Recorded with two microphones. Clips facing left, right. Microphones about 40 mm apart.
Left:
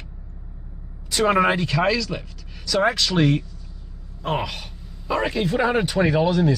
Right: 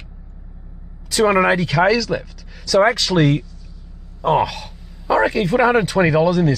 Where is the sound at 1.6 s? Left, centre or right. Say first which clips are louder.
Right 5 dB; right.